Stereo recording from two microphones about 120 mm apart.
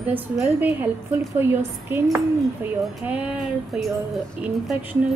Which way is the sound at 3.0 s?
10° right (ahead or behind).